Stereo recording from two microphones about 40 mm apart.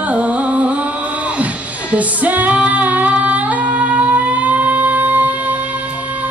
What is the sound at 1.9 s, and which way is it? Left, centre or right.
Female singing, right.